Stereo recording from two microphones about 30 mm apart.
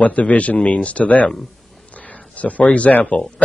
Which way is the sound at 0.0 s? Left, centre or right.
Left.